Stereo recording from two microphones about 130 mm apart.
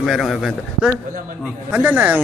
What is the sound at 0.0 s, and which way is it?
A man's voice, centre (ahead or behind).